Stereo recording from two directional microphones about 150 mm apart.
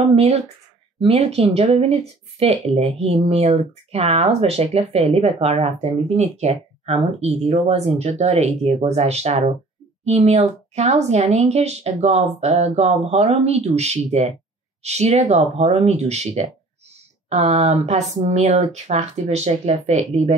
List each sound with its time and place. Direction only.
0.1 s speech: 45° right (ahead or behind)